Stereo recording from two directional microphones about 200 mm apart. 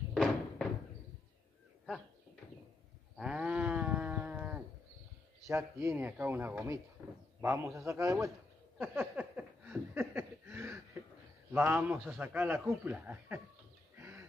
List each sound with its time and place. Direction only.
0.1 s a sound: centre (ahead or behind)
3.2 s livestock: 5° right (ahead or behind)
5.5 s speech: 15° right (ahead or behind)
8.7 s a sound: 10° right (ahead or behind)
11.5 s speech: 10° right (ahead or behind)
13.9 s chicken: 15° right (ahead or behind)